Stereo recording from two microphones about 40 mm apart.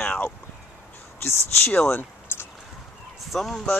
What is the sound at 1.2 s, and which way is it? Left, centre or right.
Speech, left.